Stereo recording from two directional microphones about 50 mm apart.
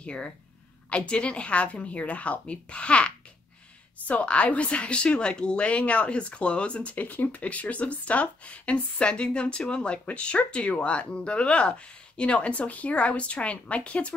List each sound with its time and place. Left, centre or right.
0.0 s speech: left
4.1 s speech: left